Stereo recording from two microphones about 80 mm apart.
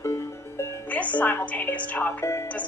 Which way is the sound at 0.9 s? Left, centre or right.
Centre.